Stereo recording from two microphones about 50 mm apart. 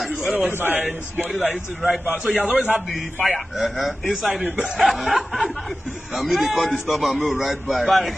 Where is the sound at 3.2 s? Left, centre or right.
Centre.